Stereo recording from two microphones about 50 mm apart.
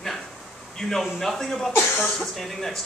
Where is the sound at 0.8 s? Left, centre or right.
Centre.